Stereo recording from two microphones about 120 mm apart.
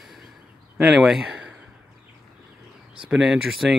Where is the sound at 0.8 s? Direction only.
5° right (ahead or behind).